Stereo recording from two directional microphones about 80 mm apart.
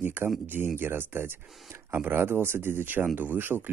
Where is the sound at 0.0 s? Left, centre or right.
Right.